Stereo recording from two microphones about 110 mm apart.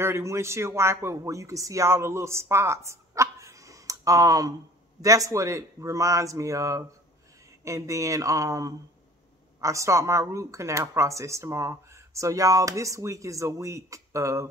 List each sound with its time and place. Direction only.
0.0 s speech: 25° right (ahead or behind)